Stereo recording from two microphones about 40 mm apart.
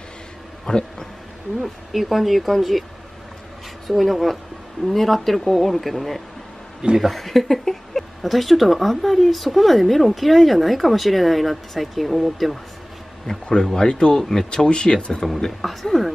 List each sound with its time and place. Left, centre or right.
0.7 s speech: centre
1.6 s speech: centre
3.8 s speech: centre
13.3 s speech: centre
15.6 s speech: centre